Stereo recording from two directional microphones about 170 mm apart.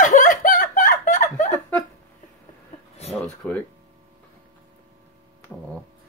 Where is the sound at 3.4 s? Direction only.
5° left (ahead or behind).